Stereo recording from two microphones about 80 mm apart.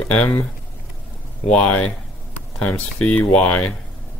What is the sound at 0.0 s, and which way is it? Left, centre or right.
Speech, centre.